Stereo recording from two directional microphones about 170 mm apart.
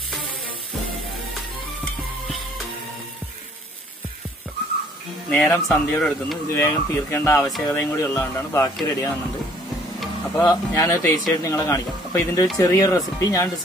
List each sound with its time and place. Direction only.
5.3 s speech: 10° left (ahead or behind)
10.4 s speech: 20° left (ahead or behind)